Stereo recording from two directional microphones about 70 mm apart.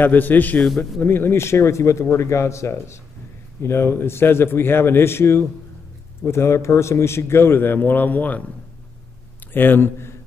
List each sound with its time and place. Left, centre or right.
0.0 s a man's voice: left
0.7 s speech: centre
1.0 s a man's voice: left
9.5 s a man's voice: left